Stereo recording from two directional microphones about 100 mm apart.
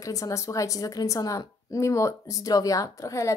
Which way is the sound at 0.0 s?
35° left (ahead or behind).